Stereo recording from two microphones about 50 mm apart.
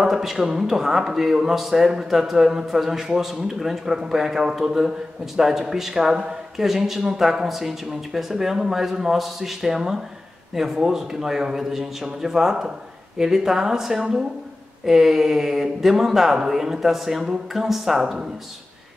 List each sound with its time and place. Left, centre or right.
0.0 s speech: centre